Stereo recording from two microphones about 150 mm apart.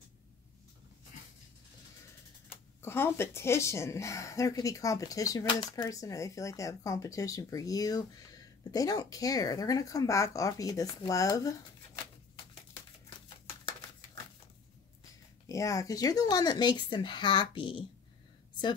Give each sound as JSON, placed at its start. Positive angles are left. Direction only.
{"t": 2.5, "sound": "speech", "side_deg": 15}
{"t": 15.4, "sound": "speech", "side_deg": 20}